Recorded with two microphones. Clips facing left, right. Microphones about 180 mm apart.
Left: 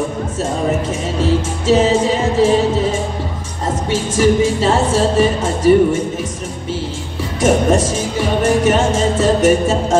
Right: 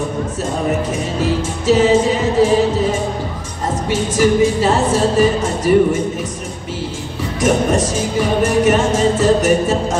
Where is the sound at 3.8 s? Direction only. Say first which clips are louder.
Left 1 dB; 25° left (ahead or behind).